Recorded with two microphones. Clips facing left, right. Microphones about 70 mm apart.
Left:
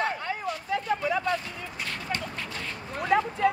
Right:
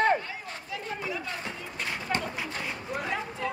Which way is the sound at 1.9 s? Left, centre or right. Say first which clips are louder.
Right 3 dB; right.